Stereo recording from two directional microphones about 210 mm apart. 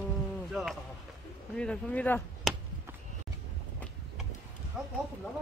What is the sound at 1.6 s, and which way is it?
Chop, 5° left (ahead or behind).